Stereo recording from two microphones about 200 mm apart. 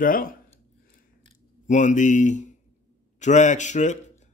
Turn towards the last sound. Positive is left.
turn(degrees=35)  # may be behind; listen again after turning